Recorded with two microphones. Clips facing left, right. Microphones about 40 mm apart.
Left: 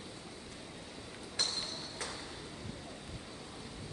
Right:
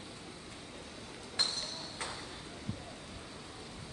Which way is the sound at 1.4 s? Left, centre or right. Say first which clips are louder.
Right 2 dB; right.